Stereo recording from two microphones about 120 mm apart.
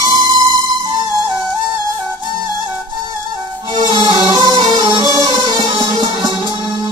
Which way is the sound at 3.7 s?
30° right (ahead or behind).